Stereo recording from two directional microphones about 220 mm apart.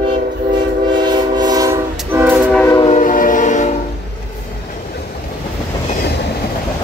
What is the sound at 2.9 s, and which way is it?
Train, 35° left (ahead or behind).